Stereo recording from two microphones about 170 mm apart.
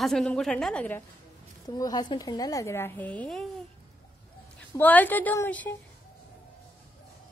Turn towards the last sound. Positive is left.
turn(degrees=10)  # may be behind; listen again after turning